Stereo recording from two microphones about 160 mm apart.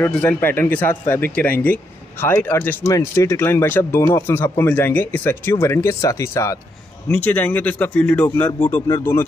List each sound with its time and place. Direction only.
0.0 s speech: 10° left (ahead or behind)